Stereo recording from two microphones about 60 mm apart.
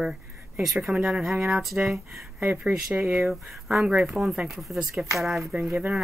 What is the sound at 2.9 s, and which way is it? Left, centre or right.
Speech, right.